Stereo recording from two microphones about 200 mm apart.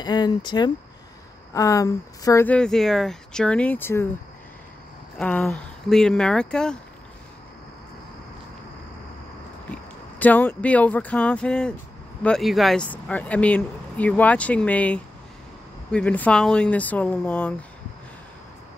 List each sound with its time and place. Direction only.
0.0 s speech: 20° left (ahead or behind)
5.2 s speech: 5° left (ahead or behind)
10.1 s speech: 5° left (ahead or behind)